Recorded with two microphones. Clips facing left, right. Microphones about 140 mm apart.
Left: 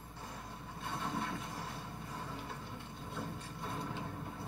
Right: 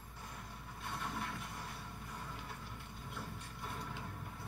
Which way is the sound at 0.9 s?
30° left (ahead or behind).